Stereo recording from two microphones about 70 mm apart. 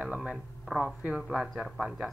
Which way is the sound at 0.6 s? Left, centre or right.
Centre.